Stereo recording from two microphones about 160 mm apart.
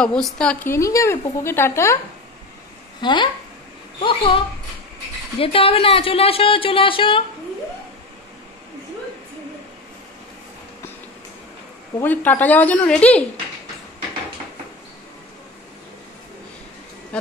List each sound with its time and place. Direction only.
0.0 s a woman's voice: 5° left (ahead or behind)
0.7 s speech: 20° left (ahead or behind)
3.0 s speech: 30° left (ahead or behind)
5.4 s speech: 35° left (ahead or behind)
12.0 s speech: 10° left (ahead or behind)
17.1 s speech: 10° left (ahead or behind)